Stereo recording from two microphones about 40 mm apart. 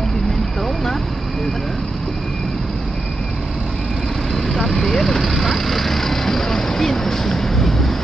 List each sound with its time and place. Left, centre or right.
4.3 s vehicle: centre